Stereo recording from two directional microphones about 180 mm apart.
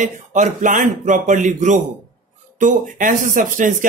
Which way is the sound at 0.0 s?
45° right (ahead or behind).